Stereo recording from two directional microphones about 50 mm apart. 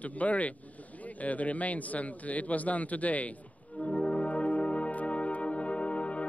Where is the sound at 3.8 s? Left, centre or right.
Left.